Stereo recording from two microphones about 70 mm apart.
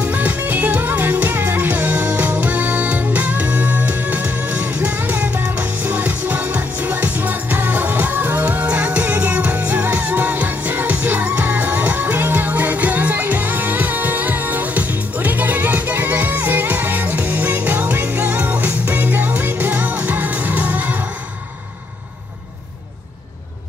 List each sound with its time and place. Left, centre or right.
0.0 s music: right